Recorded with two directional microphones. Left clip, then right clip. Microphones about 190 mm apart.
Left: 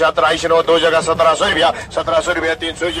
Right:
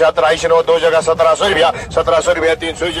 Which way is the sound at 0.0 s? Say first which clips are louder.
Right 2 dB; 40° right (ahead or behind).